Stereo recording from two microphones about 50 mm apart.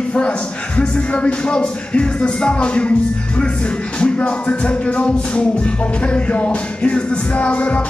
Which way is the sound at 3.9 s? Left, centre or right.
Left.